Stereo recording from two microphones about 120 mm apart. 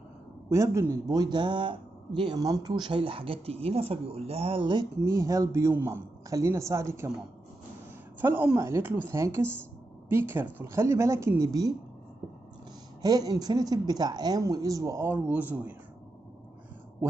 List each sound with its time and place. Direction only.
0.5 s speech: 25° right (ahead or behind); by 2.4 s 45° right (ahead or behind)
2.4 s speech: 30° right (ahead or behind)
5.0 s a man's voice: 25° right (ahead or behind)
8.2 s a man's voice: 15° right (ahead or behind)
13.0 s speech: 30° right (ahead or behind); by 15.7 s 15° right (ahead or behind)